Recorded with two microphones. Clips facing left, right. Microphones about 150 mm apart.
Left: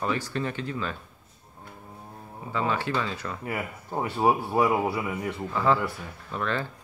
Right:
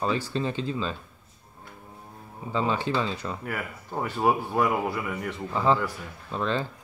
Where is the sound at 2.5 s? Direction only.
20° right (ahead or behind).